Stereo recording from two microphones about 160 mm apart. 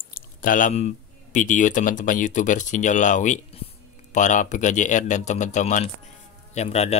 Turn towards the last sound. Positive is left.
turn(degrees=40)  # may be behind; listen again after turning